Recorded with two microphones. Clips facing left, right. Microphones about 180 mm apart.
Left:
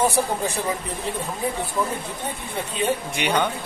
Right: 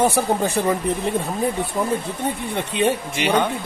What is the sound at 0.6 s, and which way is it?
Speech, 60° right (ahead or behind).